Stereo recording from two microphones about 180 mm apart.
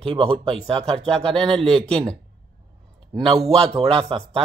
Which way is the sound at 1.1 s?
5° left (ahead or behind).